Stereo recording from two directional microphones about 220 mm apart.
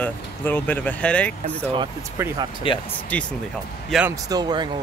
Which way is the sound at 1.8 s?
15° right (ahead or behind).